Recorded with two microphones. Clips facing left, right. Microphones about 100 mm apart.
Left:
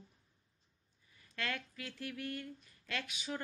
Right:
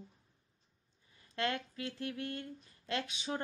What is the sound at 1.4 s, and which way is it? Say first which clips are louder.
Speech: right 5 dB; 25° right (ahead or behind).